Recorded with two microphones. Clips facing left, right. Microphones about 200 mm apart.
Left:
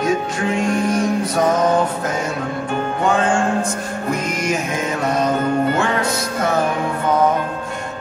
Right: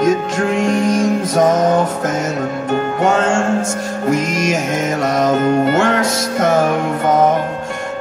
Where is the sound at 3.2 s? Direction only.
45° right (ahead or behind).